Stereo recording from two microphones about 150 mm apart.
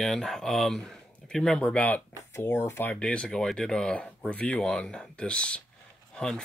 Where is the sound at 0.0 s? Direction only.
Centre (ahead or behind).